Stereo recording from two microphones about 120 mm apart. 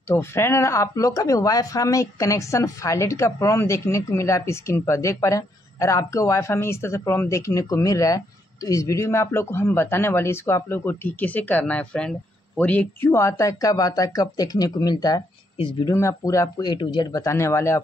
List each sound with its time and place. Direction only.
0.1 s speech: 20° left (ahead or behind)
13.1 s speech: 25° left (ahead or behind)